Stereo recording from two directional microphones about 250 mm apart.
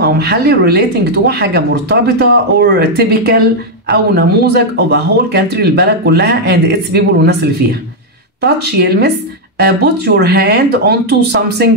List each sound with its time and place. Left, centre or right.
0.0 s speech: right
8.4 s speech: right